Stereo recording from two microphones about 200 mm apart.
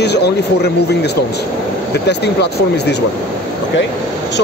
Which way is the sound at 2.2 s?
55° left (ahead or behind).